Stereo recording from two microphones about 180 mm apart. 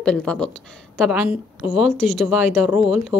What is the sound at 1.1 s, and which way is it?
A woman's voice, 10° right (ahead or behind).